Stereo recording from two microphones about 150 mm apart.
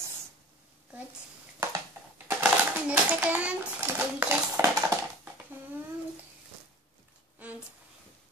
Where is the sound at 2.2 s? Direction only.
10° right (ahead or behind).